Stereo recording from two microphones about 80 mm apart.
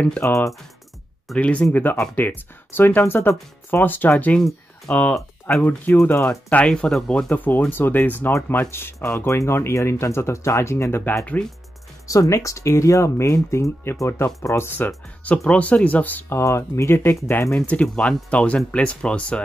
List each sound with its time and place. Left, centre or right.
0.2 s speech: left
1.3 s speech: centre
4.4 s speech: centre
5.6 s speech: left
5.9 s speech: left
6.2 s speech: centre
8.3 s speech: left
12.1 s speech: left
15.2 s speech: centre
16.3 s speech: left
17.6 s speech: centre